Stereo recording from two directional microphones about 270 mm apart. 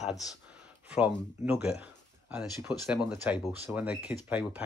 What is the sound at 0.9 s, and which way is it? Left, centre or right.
Speech, centre.